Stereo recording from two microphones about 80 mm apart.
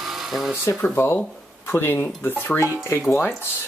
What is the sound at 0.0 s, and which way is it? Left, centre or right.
Tools, centre.